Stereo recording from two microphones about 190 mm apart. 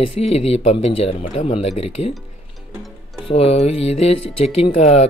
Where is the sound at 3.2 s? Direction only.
30° left (ahead or behind).